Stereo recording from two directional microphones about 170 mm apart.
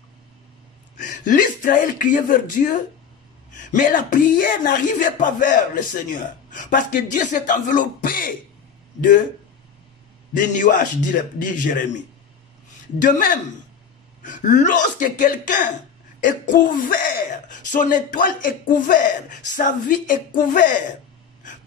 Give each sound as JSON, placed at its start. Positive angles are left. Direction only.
{"t": 0.9, "sound": "speech", "side_deg": 50}
{"t": 10.4, "sound": "speech", "side_deg": 50}
{"t": 13.0, "sound": "speech", "side_deg": 50}